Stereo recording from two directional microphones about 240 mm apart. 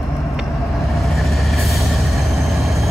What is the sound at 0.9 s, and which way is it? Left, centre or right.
Vehicle, centre.